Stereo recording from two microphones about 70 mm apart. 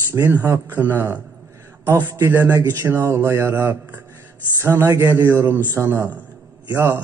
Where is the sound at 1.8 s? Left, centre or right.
Right.